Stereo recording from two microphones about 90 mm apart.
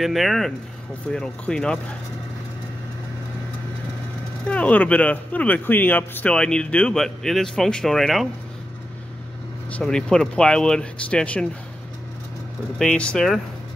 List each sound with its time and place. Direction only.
0.0 s speech: centre (ahead or behind)
4.5 s speech: 15° left (ahead or behind)
6.3 s speech: 10° left (ahead or behind)
9.7 s speech: 15° left (ahead or behind)
12.7 s speech: 10° left (ahead or behind)